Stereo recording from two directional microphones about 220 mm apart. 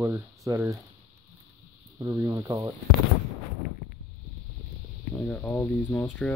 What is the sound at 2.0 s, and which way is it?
Speech, 15° right (ahead or behind).